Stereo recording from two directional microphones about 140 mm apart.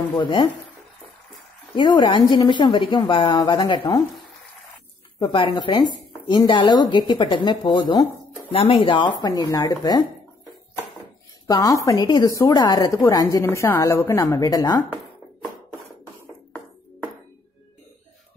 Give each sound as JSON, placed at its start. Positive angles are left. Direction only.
{"t": 0.1, "sound": "speech", "side_deg": 35}
{"t": 1.8, "sound": "speech", "side_deg": 35}
{"t": 5.2, "sound": "speech", "side_deg": 35}
{"t": 11.4, "sound": "a woman's voice", "side_deg": 25}